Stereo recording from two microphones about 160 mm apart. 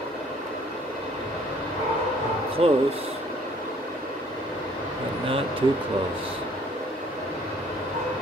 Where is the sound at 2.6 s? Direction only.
40° right (ahead or behind).